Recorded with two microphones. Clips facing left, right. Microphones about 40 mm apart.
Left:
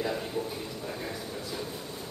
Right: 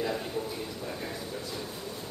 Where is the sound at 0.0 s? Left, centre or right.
Centre.